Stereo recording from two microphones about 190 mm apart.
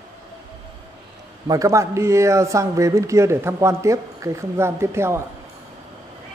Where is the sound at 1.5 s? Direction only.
15° right (ahead or behind).